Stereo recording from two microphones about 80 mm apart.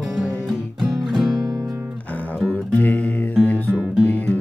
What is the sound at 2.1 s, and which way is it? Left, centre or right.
Music, left.